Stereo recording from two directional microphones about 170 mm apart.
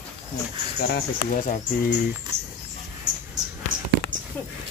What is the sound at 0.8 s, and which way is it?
Speech, 60° left (ahead or behind).